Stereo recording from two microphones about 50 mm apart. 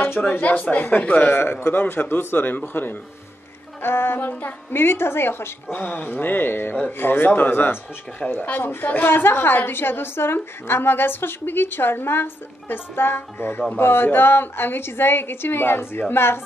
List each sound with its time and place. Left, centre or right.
0.2 s a man's voice: left
1.3 s a woman's voice: left
4.3 s a man's voice: left
4.7 s a woman's voice: left
8.2 s speech: left
8.5 s a woman's voice: left